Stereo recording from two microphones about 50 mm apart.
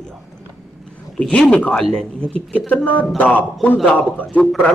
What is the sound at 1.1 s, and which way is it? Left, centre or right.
A woman's voice, centre.